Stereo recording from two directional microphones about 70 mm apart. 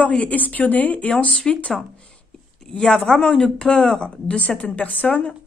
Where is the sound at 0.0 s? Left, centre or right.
Centre.